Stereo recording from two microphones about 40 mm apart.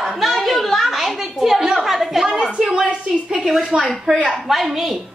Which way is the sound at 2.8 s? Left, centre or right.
Right.